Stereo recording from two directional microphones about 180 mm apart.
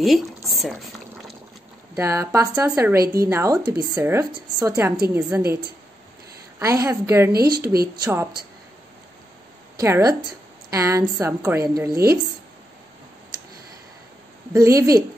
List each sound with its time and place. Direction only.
0.5 s boiling: centre (ahead or behind)
2.0 s a woman's voice: 15° right (ahead or behind)
6.6 s a woman's voice: 20° right (ahead or behind)
7.3 s speech: 60° right (ahead or behind)
7.9 s speech: 20° right (ahead or behind)
9.8 s a woman's voice: 15° right (ahead or behind)
11.9 s speech: 60° right (ahead or behind)
14.5 s a woman's voice: 15° right (ahead or behind)